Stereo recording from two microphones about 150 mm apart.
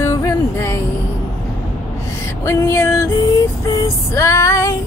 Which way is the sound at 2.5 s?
20° left (ahead or behind).